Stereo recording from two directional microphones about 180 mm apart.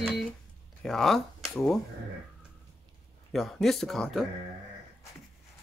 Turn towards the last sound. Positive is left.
turn(degrees=0)  # may be behind; listen again after turning